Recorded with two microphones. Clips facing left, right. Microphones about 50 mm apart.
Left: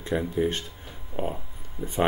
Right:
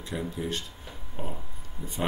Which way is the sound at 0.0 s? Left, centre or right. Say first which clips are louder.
Left 7 dB; left.